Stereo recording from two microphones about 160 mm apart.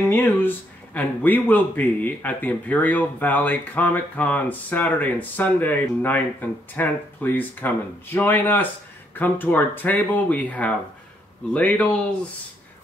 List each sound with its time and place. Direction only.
0.1 s speech: 15° left (ahead or behind)